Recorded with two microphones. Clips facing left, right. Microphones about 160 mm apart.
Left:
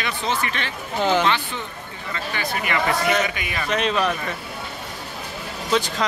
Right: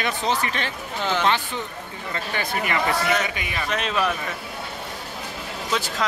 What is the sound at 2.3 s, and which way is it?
Speech, 45° right (ahead or behind).